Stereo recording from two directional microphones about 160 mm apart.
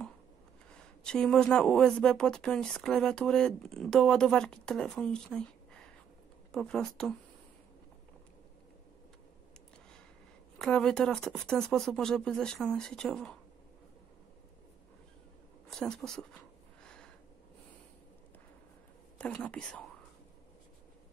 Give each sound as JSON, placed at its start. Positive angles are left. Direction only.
{"t": 0.7, "sound": "speech", "side_deg": 5}
{"t": 10.6, "sound": "speech", "side_deg": 5}
{"t": 15.7, "sound": "speech", "side_deg": 5}
{"t": 16.8, "sound": "a sound", "side_deg": 5}
{"t": 19.1, "sound": "speech", "side_deg": 5}